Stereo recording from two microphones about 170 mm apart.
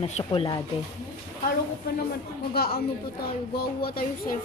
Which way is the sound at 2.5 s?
65° left (ahead or behind).